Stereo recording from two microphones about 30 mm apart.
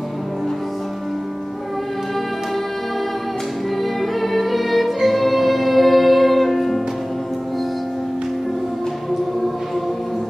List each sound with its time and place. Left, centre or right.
4.2 s music: centre